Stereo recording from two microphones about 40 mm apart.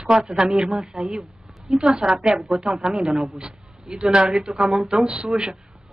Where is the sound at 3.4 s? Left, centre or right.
Right.